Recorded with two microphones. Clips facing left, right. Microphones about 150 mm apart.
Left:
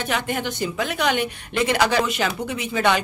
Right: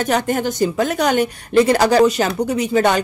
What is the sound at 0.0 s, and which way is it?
A woman's voice, 40° right (ahead or behind).